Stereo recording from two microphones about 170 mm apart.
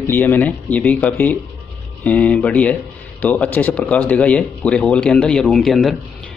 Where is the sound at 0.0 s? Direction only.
15° left (ahead or behind).